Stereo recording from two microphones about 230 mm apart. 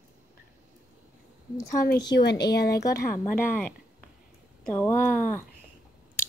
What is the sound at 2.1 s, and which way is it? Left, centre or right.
Speech, left.